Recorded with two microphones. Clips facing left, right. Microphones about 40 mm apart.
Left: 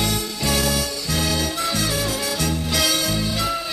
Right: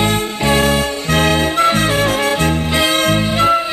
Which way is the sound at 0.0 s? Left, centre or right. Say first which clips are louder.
Right 8 dB; right.